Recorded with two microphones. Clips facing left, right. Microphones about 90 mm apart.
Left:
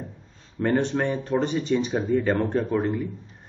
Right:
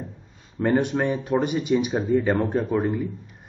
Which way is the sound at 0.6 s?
10° right (ahead or behind).